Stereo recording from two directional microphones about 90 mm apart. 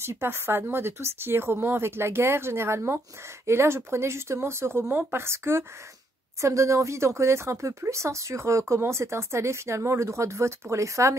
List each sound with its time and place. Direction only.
0.0 s speech: 30° right (ahead or behind)